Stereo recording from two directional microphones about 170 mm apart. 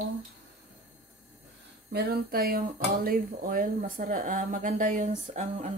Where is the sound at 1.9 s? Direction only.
65° right (ahead or behind).